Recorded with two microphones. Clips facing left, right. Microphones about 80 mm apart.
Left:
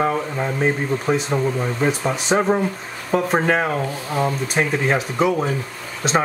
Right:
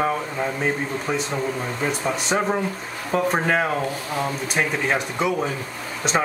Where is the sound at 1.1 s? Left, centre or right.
Left.